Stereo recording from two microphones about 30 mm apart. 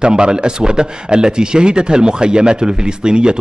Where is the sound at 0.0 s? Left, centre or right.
Right.